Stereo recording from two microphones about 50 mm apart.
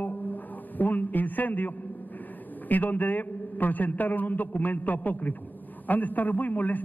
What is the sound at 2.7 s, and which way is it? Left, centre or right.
A man's voice, left.